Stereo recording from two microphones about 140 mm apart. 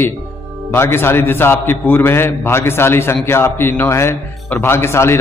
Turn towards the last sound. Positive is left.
turn(degrees=20)  # may be behind; listen again after turning